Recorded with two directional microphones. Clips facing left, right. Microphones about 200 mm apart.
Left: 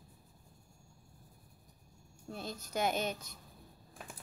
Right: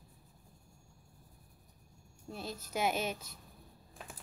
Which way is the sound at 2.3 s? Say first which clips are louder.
Even; 5° right (ahead or behind).